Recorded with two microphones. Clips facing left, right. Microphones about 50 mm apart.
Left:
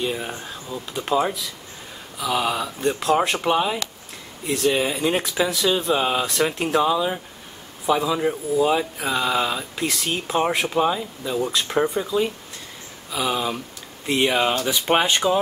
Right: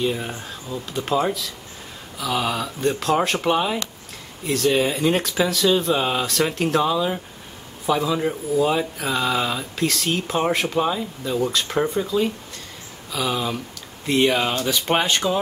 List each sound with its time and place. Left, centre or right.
0.0 s speech: centre